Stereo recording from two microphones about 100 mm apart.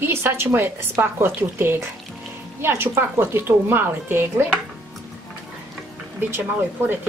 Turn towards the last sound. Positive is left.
turn(degrees=-20)  # may be behind; listen again after turning